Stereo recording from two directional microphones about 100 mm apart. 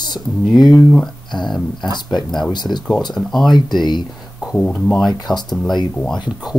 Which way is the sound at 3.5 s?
45° left (ahead or behind).